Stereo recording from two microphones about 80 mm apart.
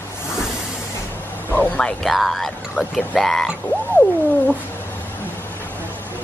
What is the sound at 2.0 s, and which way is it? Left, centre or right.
Speech, centre.